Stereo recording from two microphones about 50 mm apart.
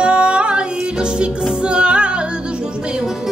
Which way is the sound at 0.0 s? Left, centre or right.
Right.